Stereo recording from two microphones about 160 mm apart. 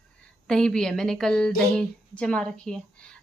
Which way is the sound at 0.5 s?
5° left (ahead or behind).